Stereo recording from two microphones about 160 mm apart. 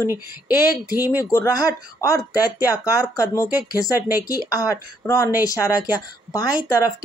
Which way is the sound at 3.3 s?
20° left (ahead or behind).